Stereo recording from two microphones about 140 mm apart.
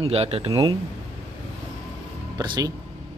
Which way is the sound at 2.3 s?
30° right (ahead or behind).